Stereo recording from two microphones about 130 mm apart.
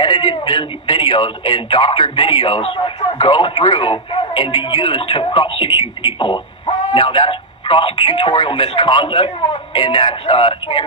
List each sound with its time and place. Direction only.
0.0 s a man's voice: 40° left (ahead or behind)